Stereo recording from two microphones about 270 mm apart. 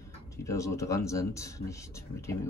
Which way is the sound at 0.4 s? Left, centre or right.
Centre.